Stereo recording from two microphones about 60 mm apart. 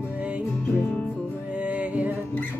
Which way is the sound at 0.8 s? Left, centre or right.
Left.